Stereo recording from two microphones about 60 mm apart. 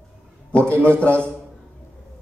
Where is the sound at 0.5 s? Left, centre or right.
Left.